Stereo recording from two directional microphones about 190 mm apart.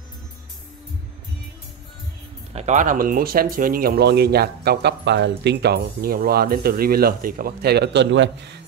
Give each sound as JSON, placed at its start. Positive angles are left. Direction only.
{"t": 2.5, "sound": "speech", "side_deg": -40}